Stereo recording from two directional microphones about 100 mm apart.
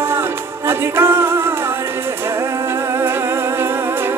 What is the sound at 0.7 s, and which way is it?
A capella, 25° right (ahead or behind).